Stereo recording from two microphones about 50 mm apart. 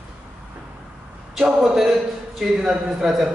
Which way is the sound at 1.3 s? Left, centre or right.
Centre.